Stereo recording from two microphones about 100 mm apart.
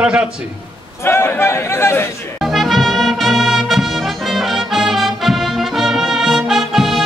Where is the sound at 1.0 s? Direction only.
25° left (ahead or behind).